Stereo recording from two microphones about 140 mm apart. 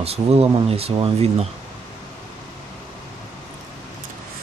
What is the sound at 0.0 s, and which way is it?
Speech, 45° right (ahead or behind).